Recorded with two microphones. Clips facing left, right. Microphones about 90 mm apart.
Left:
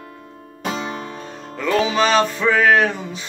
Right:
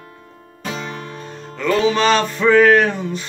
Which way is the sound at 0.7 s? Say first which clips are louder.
Left 2 dB; 10° left (ahead or behind).